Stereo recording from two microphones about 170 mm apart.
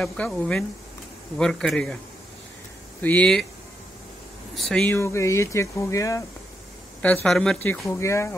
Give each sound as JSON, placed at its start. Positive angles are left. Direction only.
{"t": 0.0, "sound": "speech", "side_deg": 5}
{"t": 3.0, "sound": "speech", "side_deg": 10}
{"t": 4.6, "sound": "speech", "side_deg": 5}
{"t": 7.2, "sound": "speech", "side_deg": 5}